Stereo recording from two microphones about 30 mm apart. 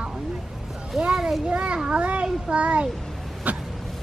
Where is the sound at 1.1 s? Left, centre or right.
Centre.